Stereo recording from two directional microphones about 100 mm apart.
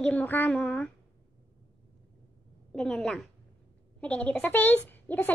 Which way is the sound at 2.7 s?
5° left (ahead or behind).